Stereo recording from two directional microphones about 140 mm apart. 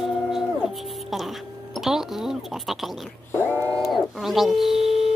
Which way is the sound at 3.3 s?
15° left (ahead or behind).